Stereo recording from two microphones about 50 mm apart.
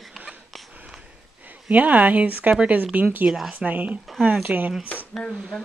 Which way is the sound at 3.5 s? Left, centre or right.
Right.